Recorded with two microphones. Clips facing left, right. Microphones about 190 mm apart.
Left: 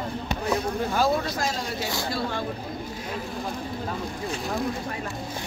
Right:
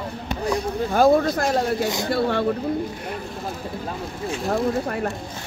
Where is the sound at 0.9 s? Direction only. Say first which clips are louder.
Right 10 dB; 55° right (ahead or behind).